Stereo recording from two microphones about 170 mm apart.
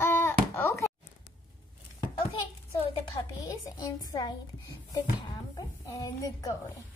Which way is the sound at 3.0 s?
20° left (ahead or behind).